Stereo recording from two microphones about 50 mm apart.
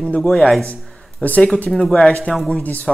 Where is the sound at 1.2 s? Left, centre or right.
Left.